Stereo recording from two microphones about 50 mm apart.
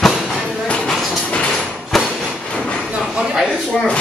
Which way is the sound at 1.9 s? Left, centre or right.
Centre.